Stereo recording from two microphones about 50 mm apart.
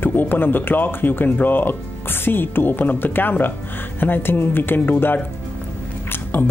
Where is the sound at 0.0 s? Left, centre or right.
Left.